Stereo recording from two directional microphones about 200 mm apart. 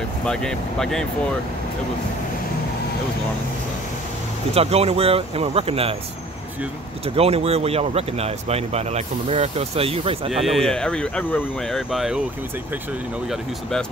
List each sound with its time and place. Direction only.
0.2 s speech: 5° left (ahead or behind)
4.6 s speech: 30° right (ahead or behind)
7.2 s speech: 30° right (ahead or behind)
10.4 s speech: centre (ahead or behind)
13.3 s speech: 5° left (ahead or behind)